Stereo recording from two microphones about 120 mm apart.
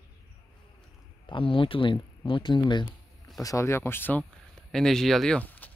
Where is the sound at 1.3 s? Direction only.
45° left (ahead or behind).